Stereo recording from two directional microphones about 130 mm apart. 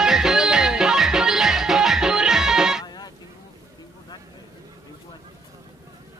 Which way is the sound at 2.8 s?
30° left (ahead or behind).